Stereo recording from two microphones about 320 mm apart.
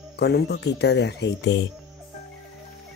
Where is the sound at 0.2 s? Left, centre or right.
Left.